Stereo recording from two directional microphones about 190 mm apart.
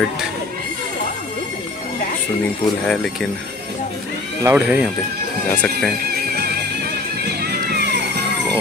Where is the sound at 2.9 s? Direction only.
Centre (ahead or behind).